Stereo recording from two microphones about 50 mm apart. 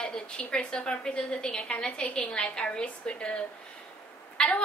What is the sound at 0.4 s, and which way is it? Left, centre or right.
A woman's voice, centre.